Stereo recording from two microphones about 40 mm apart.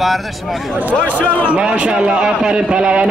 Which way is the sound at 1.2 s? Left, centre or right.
Left.